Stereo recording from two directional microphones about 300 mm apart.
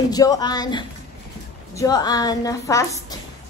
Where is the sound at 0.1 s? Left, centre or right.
Centre.